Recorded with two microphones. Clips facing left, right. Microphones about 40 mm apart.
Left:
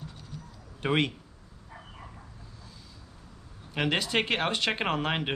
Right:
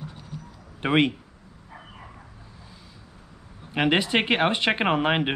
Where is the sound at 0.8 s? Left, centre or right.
Right.